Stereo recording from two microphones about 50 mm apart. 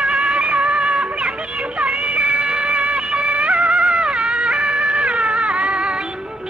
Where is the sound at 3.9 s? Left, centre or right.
Centre.